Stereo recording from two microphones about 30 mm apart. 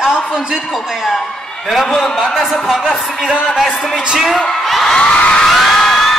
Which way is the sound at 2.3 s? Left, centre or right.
Centre.